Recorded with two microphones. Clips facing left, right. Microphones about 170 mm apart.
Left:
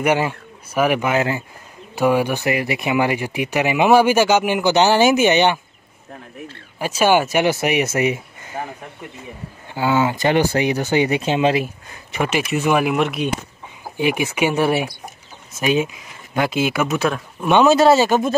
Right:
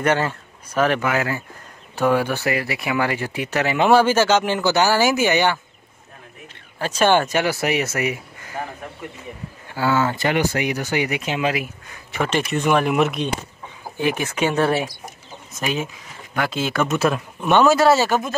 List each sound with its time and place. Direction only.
0.0 s a man's voice: 10° left (ahead or behind)
6.8 s speech: 10° left (ahead or behind)
7.4 s speech: 20° left (ahead or behind)
9.8 s speech: 15° left (ahead or behind)
10.3 s speech: 30° left (ahead or behind)
12.1 s speech: 10° left (ahead or behind)
13.9 s speech: 15° left (ahead or behind)
16.8 s speech: centre (ahead or behind)
17.5 s speech: 20° left (ahead or behind)